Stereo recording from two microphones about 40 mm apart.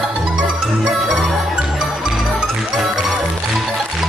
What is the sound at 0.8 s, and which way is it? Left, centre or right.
Music, centre.